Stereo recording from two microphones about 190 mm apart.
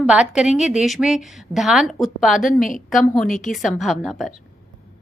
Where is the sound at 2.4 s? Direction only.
45° left (ahead or behind).